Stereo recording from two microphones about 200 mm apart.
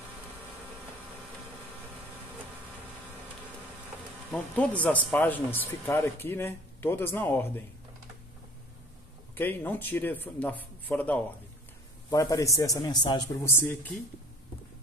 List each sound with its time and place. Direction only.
4.3 s speech: 5° left (ahead or behind)
9.3 s speech: 10° left (ahead or behind)